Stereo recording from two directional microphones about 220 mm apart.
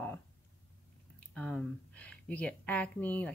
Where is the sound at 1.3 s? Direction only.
5° left (ahead or behind).